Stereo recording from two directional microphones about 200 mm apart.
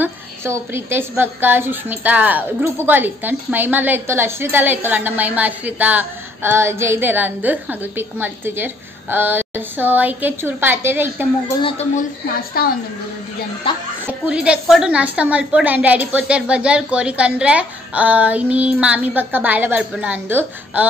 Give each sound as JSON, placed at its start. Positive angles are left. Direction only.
{"t": 0.0, "sound": "a woman's voice", "side_deg": -10}
{"t": 12.6, "sound": "a woman's voice", "side_deg": 50}
{"t": 13.7, "sound": "speech", "side_deg": 25}
{"t": 14.0, "sound": "a woman's voice", "side_deg": -5}